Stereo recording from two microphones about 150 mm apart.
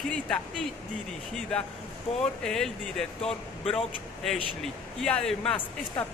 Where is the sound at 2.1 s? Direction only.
40° left (ahead or behind).